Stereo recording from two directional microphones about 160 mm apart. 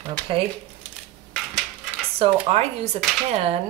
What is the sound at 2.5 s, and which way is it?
Speech, 40° right (ahead or behind).